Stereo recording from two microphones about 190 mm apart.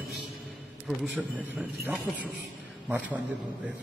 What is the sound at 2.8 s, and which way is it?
Speech, 10° right (ahead or behind).